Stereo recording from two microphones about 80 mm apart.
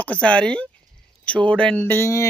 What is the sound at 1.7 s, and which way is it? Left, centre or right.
Speech, left.